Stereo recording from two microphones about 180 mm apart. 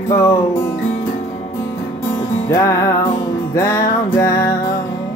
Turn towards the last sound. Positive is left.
turn(degrees=15)  # may be behind; listen again after turning